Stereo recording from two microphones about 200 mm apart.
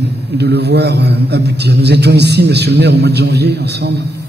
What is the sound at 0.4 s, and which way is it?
A man's voice, 55° right (ahead or behind).